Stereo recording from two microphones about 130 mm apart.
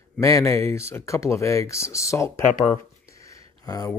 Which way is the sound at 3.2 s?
25° left (ahead or behind).